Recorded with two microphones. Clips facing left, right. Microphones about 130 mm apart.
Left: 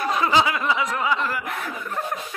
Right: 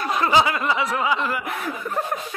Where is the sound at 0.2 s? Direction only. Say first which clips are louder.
Right 3 dB; centre (ahead or behind).